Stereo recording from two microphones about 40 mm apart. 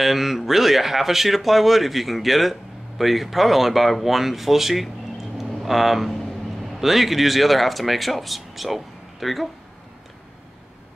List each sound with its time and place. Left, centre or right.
0.0 s speech: centre
4.8 s vehicle: centre
6.6 s speech: centre